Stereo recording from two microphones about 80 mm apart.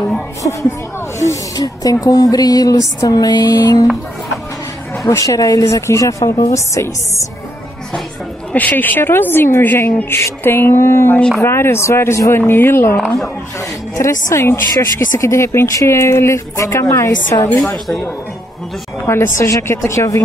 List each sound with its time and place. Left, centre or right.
0.4 s speech: left
5.0 s a woman's voice: left
8.5 s a woman's voice: left
13.6 s a woman's voice: left
17.5 s a woman's voice: left
19.0 s a woman's voice: left